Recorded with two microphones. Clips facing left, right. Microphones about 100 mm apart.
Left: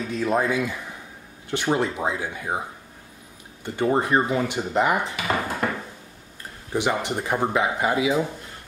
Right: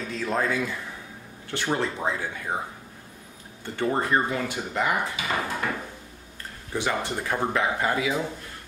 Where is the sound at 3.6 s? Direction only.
20° left (ahead or behind).